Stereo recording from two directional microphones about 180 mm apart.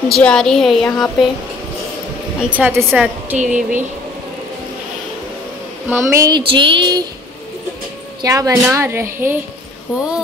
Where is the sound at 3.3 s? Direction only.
45° right (ahead or behind).